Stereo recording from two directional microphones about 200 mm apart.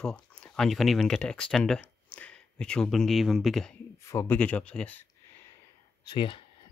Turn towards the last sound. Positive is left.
turn(degrees=25)  # may be behind; listen again after turning